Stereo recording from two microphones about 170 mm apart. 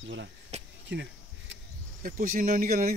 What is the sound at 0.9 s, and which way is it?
Speech, 90° right.